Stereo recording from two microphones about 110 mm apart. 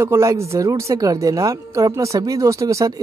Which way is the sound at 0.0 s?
25° right (ahead or behind).